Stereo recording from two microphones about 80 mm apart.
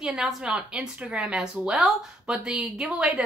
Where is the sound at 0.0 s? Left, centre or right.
Centre.